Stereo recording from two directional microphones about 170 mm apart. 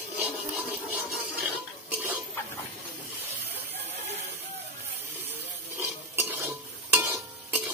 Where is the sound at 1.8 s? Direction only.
10° right (ahead or behind).